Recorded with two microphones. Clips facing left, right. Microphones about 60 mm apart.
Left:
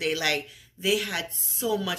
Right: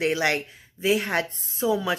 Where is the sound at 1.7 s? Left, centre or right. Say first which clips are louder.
Right 3 dB; right.